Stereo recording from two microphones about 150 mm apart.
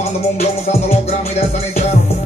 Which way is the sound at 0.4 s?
45° left (ahead or behind).